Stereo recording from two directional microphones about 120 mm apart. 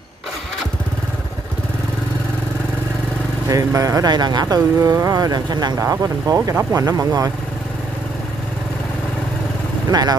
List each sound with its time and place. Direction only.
3.4 s speech: 30° right (ahead or behind)
6.5 s speech: 20° right (ahead or behind)
6.9 s speech: 30° right (ahead or behind)
9.8 s speech: 35° right (ahead or behind)